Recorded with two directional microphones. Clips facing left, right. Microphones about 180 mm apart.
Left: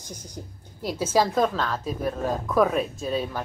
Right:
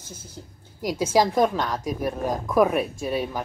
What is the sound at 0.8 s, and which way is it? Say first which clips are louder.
A woman's voice: right 2 dB; 10° right (ahead or behind).